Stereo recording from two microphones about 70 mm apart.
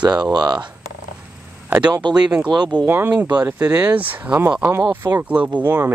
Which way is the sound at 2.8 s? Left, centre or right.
Right.